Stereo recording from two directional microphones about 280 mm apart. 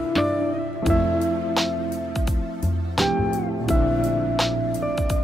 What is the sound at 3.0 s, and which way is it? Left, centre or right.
Music, centre.